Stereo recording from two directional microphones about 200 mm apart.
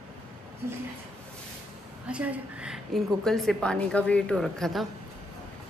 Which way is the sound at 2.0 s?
5° right (ahead or behind).